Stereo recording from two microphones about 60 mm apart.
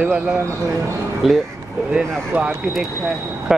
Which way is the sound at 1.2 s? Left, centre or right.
Centre.